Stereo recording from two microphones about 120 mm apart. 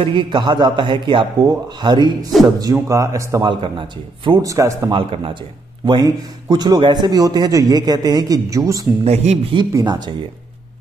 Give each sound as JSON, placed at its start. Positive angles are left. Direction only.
{"t": 0.0, "sound": "a man's voice", "side_deg": -40}
{"t": 3.4, "sound": "a man's voice", "side_deg": -40}
{"t": 4.4, "sound": "a man's voice", "side_deg": -25}
{"t": 4.9, "sound": "a man's voice", "side_deg": -45}
{"t": 9.0, "sound": "speech", "side_deg": -65}
{"t": 9.7, "sound": "a man's voice", "side_deg": -30}